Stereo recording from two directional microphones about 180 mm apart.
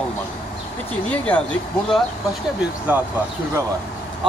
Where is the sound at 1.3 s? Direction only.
10° left (ahead or behind).